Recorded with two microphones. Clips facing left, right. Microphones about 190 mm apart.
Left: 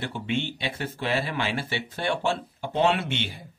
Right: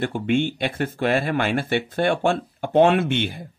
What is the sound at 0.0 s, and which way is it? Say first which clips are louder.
Speech: right 8 dB; 50° right (ahead or behind).